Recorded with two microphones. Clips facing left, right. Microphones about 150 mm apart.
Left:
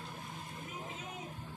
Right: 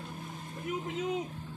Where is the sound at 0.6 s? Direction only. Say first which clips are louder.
Right 15 dB; 80° right.